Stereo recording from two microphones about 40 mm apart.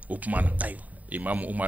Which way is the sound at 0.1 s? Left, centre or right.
Right.